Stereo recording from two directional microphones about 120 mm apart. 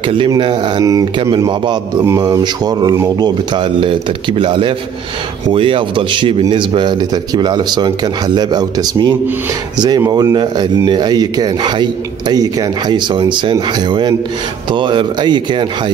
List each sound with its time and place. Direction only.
0.4 s a man's voice: 40° right (ahead or behind)
2.1 s a man's voice: 35° right (ahead or behind)